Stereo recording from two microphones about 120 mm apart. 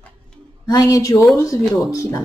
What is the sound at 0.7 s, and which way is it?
Speech, 30° left (ahead or behind).